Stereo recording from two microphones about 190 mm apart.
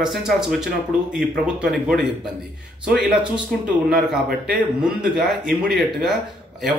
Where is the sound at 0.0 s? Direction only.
Centre (ahead or behind).